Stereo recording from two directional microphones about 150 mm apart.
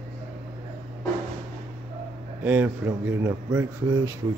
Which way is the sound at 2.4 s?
10° right (ahead or behind).